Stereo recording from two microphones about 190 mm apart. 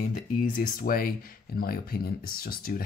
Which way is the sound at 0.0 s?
45° left (ahead or behind).